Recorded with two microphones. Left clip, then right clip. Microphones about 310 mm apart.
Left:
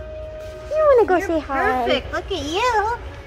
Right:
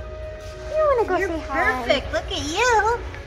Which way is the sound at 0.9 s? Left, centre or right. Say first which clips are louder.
Left 5 dB; centre.